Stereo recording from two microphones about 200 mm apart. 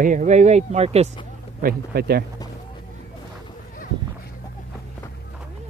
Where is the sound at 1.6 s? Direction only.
50° right (ahead or behind).